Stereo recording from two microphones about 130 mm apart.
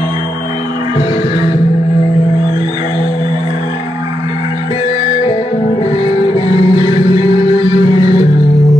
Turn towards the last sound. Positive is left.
turn(degrees=-35)  # may be behind; listen again after turning